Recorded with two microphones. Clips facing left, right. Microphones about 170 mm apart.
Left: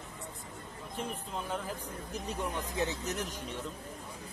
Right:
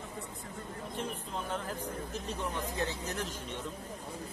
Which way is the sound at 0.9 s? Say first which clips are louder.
Left 1 dB; 5° left (ahead or behind).